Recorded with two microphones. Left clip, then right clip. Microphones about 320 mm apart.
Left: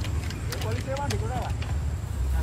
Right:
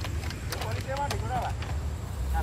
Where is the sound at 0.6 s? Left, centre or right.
Centre.